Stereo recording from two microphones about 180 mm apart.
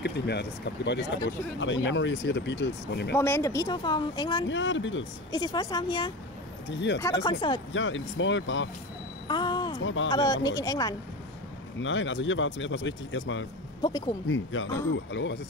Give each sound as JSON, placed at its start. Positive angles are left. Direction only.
{"t": 0.0, "sound": "speech", "side_deg": 70}
{"t": 3.2, "sound": "speech", "side_deg": 15}
{"t": 4.5, "sound": "speech", "side_deg": 90}
{"t": 5.3, "sound": "speech", "side_deg": 25}
{"t": 6.7, "sound": "speech", "side_deg": 80}
{"t": 7.2, "sound": "speech", "side_deg": 25}
{"t": 7.7, "sound": "speech", "side_deg": 90}
{"t": 9.3, "sound": "a sound", "side_deg": 25}
{"t": 10.1, "sound": "speech", "side_deg": 20}
{"t": 11.8, "sound": "speech", "side_deg": 90}
{"t": 13.8, "sound": "speech", "side_deg": 25}
{"t": 14.2, "sound": "speech", "side_deg": 90}